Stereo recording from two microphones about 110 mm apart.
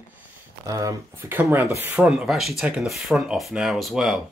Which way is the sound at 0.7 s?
30° right (ahead or behind).